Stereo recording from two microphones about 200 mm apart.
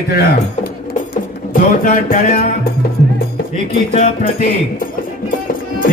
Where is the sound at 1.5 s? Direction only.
45° left (ahead or behind).